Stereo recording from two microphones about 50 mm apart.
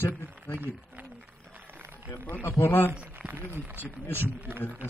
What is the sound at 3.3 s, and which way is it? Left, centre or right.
Speech, right.